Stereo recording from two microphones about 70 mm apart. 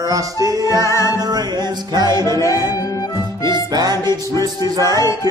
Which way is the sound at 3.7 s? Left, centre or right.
Right.